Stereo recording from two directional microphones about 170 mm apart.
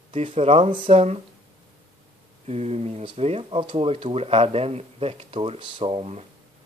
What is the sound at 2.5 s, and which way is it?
Speech, 40° right (ahead or behind).